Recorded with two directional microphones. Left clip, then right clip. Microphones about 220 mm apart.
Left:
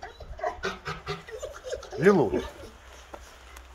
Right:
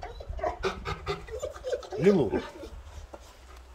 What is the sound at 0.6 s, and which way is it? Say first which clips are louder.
Pant: right 1 dB; 25° right (ahead or behind).